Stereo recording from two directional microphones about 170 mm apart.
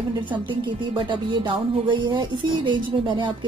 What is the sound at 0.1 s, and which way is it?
Music, 30° right (ahead or behind).